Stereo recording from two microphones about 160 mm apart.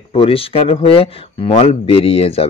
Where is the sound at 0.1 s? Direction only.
35° left (ahead or behind).